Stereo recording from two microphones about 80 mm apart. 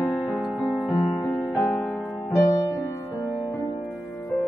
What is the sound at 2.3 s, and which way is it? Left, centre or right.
Music, left.